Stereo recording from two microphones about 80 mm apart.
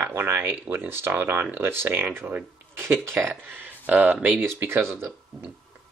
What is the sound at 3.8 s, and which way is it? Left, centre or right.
Speech, centre.